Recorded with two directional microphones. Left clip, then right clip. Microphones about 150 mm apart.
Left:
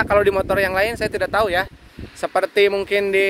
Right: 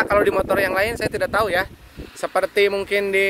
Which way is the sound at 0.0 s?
25° left (ahead or behind).